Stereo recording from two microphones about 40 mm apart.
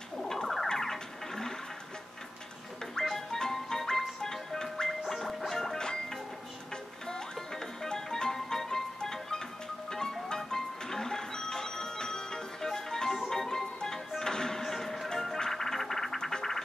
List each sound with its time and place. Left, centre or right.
0.3 s a sound: centre
0.7 s music: centre
3.0 s music: centre
5.8 s music: centre